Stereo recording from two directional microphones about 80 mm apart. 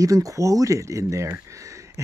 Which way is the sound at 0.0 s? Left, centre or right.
Right.